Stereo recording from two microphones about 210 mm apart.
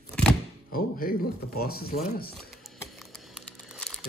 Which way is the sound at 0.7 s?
45° left (ahead or behind).